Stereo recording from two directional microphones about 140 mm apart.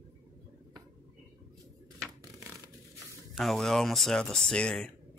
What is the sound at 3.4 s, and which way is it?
Speech, centre (ahead or behind).